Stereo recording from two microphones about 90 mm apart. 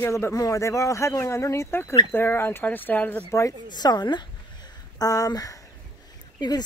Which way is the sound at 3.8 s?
50° left (ahead or behind).